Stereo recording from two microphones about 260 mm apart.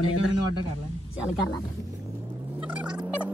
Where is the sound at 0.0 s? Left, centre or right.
Left.